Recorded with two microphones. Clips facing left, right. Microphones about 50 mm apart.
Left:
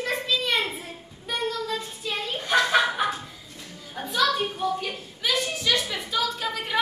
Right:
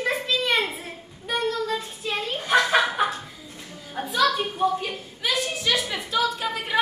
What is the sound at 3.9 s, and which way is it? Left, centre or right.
Music, centre.